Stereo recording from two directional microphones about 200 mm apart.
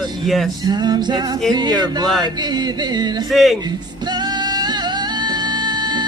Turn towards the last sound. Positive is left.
turn(degrees=-20)  # may be behind; listen again after turning